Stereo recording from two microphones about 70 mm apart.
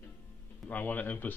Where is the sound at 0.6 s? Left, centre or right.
Left.